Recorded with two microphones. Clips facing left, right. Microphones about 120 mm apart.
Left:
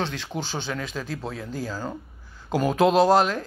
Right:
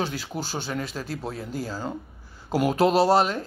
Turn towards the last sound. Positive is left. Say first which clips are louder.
# left 1 dB
turn(degrees=0)  # may be behind; listen again after turning